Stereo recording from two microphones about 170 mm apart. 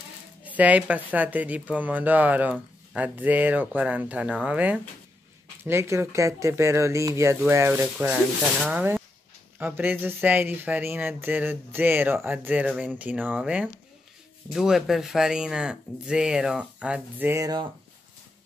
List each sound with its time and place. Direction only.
0.4 s speech: 10° right (ahead or behind)